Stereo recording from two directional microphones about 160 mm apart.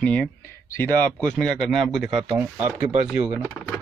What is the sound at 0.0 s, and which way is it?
Speech, 10° left (ahead or behind).